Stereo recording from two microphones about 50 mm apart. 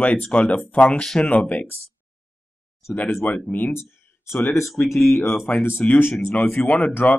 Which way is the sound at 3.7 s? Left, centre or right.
Left.